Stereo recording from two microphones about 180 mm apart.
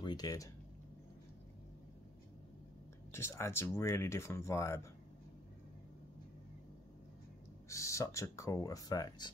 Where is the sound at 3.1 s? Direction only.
15° left (ahead or behind).